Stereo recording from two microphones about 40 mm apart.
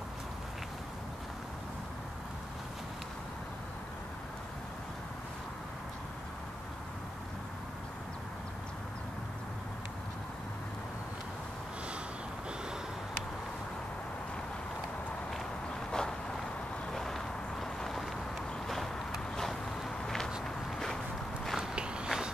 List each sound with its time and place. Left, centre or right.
15.9 s a sound: centre
20.4 s walk: centre
21.5 s walk: right